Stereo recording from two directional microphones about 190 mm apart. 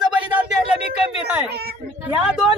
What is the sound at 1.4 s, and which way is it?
Speech, 55° right (ahead or behind).